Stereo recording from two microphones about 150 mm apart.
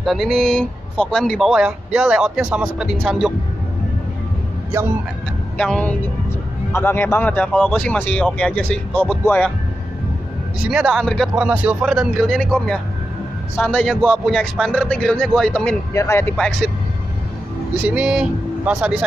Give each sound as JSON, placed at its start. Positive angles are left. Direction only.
{"t": 0.0, "sound": "speech", "side_deg": 0}
{"t": 5.6, "sound": "speech", "side_deg": 5}
{"t": 10.7, "sound": "speech", "side_deg": -5}
{"t": 14.4, "sound": "speech", "side_deg": 5}
{"t": 15.9, "sound": "speech", "side_deg": 20}
{"t": 17.8, "sound": "speech", "side_deg": -10}